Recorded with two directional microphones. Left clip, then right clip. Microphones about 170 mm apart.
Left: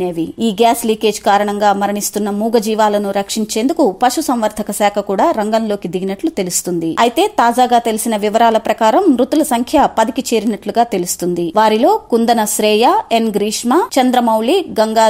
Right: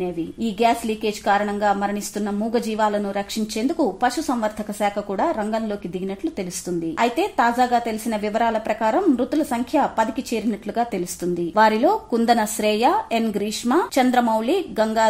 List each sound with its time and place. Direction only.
0.0 s a woman's voice: 35° left (ahead or behind)